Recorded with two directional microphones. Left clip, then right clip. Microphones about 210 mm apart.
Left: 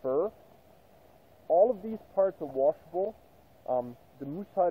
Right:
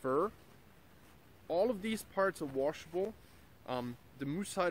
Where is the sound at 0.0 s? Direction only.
30° right (ahead or behind).